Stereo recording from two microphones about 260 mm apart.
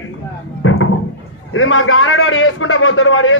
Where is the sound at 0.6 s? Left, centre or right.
Left.